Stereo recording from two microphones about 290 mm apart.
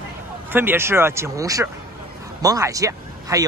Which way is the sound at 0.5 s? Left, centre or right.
Centre.